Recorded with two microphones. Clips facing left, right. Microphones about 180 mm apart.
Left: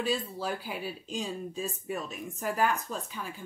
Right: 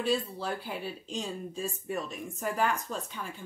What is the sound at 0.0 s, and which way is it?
Speech, centre (ahead or behind).